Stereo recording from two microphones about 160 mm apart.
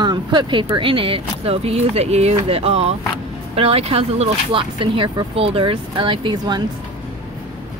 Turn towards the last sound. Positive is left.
turn(degrees=-25)  # may be behind; listen again after turning